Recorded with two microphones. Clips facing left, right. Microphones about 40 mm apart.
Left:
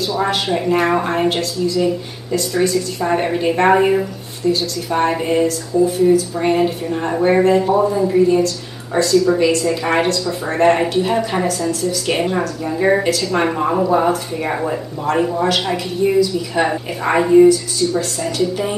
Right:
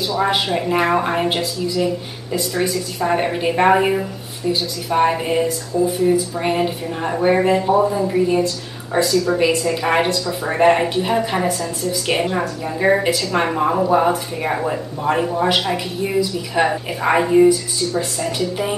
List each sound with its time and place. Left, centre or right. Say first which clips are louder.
0.0 s speech: even; centre
9.1 s speech: left 5 dB; centre